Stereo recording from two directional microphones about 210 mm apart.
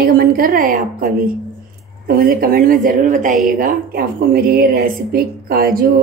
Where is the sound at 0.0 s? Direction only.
45° right (ahead or behind).